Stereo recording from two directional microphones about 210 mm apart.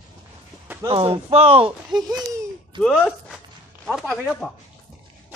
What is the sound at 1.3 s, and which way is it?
Speech, 30° right (ahead or behind).